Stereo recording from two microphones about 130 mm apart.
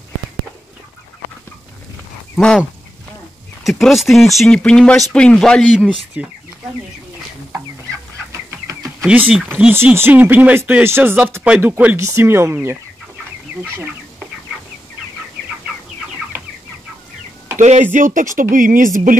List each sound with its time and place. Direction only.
2.3 s speech: 5° left (ahead or behind)
3.6 s speech: centre (ahead or behind)
6.2 s speech: 10° right (ahead or behind)
8.3 s chicken: 20° right (ahead or behind)
9.5 s speech: 15° right (ahead or behind)
17.6 s speech: 65° right (ahead or behind)
17.9 s speech: 85° right